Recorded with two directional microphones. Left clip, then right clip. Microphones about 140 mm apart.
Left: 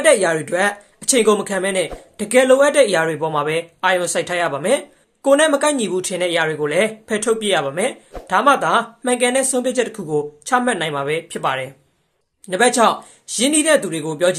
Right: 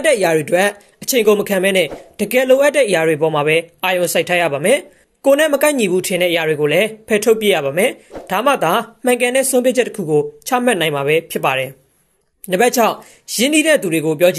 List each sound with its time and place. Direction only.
0.0 s speech: 25° right (ahead or behind)